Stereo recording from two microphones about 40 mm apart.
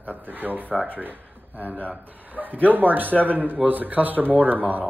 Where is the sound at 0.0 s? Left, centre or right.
Right.